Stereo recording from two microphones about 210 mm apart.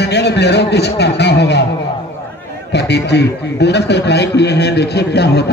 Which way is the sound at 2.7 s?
55° left (ahead or behind).